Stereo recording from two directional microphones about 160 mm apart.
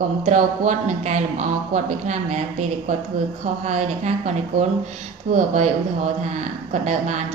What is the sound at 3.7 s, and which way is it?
Speech, 45° right (ahead or behind).